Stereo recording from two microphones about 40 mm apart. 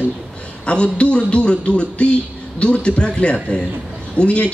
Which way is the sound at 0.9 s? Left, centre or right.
Left.